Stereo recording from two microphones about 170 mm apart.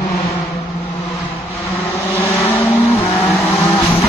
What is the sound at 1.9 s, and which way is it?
Vehicle, 15° left (ahead or behind).